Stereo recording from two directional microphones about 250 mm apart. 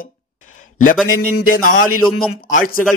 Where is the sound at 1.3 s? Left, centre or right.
Left.